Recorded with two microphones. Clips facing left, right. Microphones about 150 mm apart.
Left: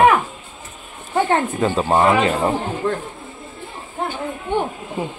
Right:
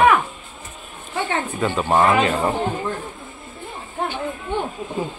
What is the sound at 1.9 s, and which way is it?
Speech, 20° left (ahead or behind).